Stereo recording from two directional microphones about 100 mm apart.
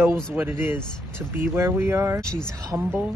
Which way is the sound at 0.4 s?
20° right (ahead or behind).